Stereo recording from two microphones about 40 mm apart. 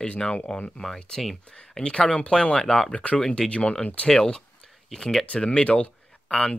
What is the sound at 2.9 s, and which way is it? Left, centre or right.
Speech, left.